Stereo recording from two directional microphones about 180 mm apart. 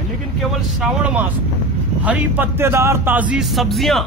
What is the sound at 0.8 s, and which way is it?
Speech, 5° right (ahead or behind).